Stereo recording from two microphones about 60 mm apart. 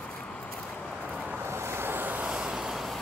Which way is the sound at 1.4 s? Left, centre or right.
Right.